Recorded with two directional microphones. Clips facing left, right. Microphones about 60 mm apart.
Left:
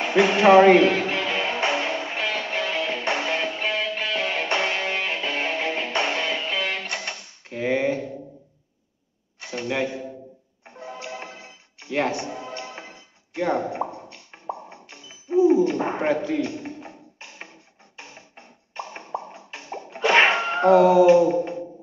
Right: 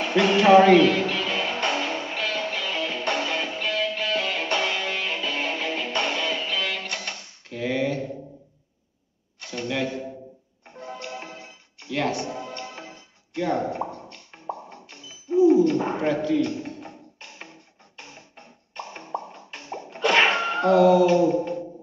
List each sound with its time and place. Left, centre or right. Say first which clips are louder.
0.0 s speech: left 2 dB; centre
0.8 s music: even; centre
7.4 s a sound: left 3 dB; left
9.4 s a sound: left 2 dB; centre
10.6 s music: even; centre
11.9 s music: left 1 dB; left
16.3 s music: right 2 dB; centre
19.1 s plop: even; centre
20.6 s a sound: left 3 dB; left